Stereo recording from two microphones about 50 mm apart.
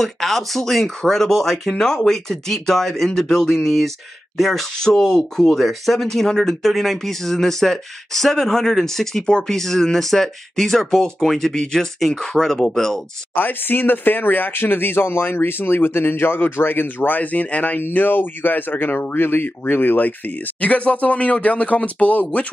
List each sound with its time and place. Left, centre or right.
0.0 s speech: centre
5.6 s speech: centre
13.3 s speech: left
20.6 s speech: left